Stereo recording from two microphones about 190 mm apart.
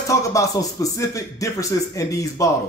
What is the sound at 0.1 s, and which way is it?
A man's voice, 15° left (ahead or behind).